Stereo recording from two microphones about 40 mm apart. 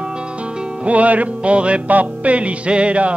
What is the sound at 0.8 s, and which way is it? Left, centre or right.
Music, right.